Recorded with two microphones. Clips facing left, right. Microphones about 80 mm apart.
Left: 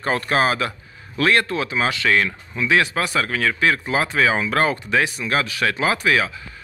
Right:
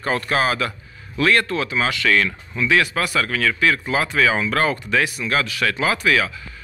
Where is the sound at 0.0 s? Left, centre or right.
Left.